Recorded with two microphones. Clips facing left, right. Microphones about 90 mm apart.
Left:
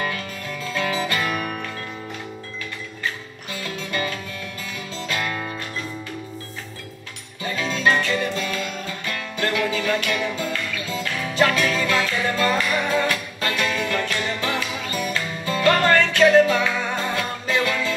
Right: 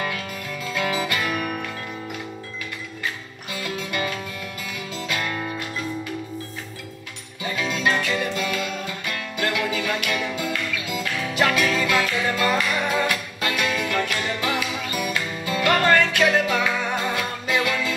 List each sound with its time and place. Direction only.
0.1 s music: 35° left (ahead or behind)
3.5 s music: 35° left (ahead or behind)
7.4 s music: 35° left (ahead or behind)